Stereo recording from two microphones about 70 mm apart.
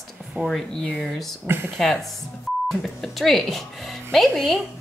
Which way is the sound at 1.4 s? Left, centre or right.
Right.